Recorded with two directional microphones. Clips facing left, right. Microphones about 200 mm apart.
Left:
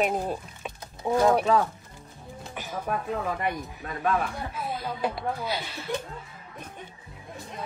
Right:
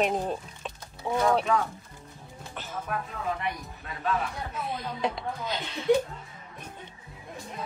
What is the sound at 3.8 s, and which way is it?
Speech, 50° left (ahead or behind).